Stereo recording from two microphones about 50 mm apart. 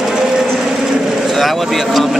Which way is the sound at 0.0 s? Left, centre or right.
Centre.